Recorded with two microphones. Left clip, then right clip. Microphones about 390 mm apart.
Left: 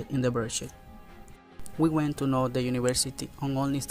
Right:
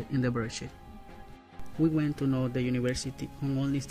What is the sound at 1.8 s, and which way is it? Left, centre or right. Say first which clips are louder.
Speech: left 2 dB; centre.